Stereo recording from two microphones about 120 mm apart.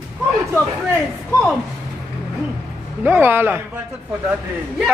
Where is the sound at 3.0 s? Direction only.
15° right (ahead or behind).